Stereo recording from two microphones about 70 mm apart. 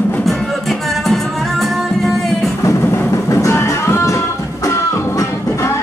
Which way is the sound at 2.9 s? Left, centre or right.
Left.